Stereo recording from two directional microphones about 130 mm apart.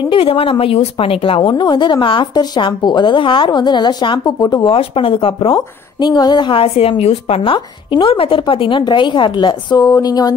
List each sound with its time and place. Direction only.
0.1 s a woman's voice: 45° left (ahead or behind)
4.6 s a woman's voice: 45° left (ahead or behind); by 10.3 s 30° left (ahead or behind)